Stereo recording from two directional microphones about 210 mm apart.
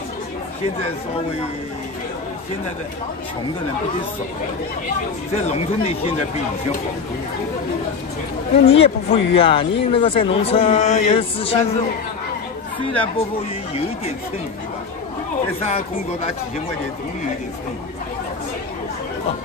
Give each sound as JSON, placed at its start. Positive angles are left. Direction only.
{"t": 5.3, "sound": "speech", "side_deg": 30}
{"t": 8.6, "sound": "speech", "side_deg": 30}